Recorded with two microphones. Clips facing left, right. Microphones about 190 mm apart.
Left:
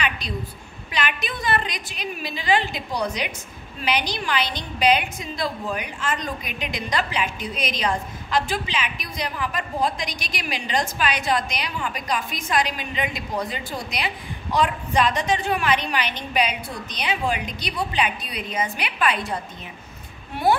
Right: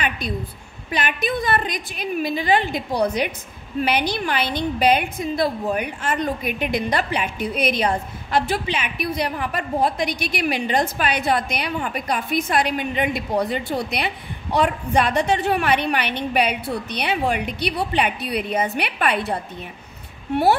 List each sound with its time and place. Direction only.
0.9 s a woman's voice: 50° right (ahead or behind)